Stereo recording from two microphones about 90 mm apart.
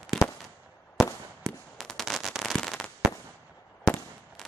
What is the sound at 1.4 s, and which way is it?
Fireworks, 5° left (ahead or behind).